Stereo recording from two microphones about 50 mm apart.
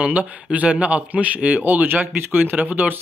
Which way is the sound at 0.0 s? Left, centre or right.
Right.